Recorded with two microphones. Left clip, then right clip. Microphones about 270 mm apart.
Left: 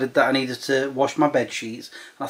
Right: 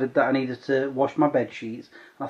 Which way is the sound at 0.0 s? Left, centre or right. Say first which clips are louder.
Left 3 dB; centre.